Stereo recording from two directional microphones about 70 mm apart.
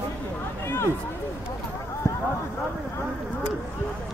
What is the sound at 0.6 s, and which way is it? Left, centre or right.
Speech, left.